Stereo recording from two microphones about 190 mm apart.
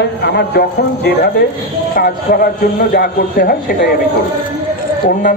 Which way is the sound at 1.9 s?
50° left (ahead or behind).